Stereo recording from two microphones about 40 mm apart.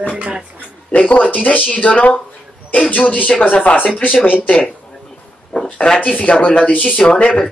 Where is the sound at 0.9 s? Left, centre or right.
Left.